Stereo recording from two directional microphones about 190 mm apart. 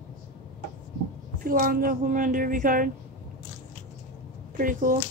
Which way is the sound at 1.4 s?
45° right (ahead or behind).